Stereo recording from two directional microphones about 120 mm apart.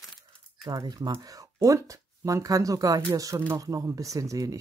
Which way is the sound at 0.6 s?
35° right (ahead or behind).